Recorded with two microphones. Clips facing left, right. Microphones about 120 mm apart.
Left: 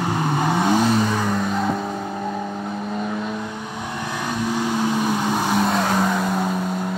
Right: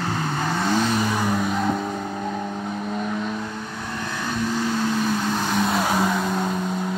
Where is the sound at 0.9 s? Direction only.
5° right (ahead or behind).